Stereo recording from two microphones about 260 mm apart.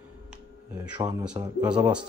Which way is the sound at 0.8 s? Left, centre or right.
Centre.